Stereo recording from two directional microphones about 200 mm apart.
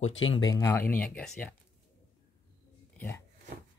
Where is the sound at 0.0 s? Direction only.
75° left (ahead or behind).